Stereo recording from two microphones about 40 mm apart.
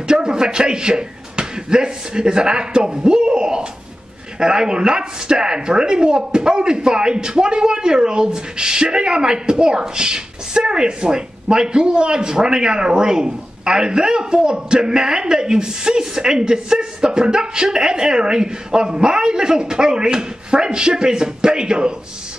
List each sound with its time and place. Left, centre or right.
0.1 s a man's voice: centre